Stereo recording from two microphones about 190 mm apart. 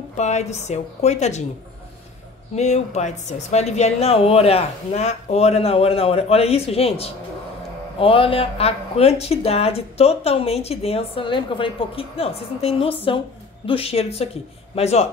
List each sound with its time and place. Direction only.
0.1 s speech: 35° left (ahead or behind)
2.5 s speech: 35° left (ahead or behind)